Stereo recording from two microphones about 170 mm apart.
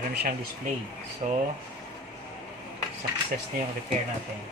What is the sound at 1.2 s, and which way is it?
Speech, 40° right (ahead or behind).